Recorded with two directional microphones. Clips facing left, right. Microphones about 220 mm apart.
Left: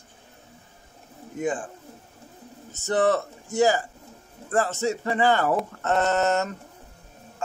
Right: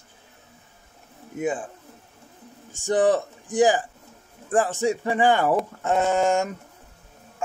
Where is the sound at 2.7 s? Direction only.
15° right (ahead or behind).